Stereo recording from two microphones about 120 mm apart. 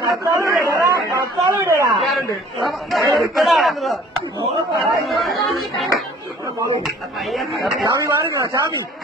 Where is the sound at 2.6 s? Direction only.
Centre (ahead or behind).